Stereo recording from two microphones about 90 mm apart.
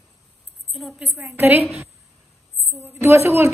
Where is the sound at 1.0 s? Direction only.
25° right (ahead or behind).